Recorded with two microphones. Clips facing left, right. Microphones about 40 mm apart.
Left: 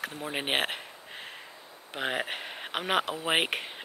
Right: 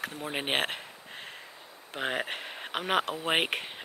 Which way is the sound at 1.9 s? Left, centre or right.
Centre.